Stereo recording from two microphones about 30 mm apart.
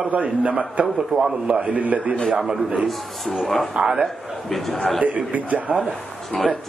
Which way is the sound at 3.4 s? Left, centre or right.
Centre.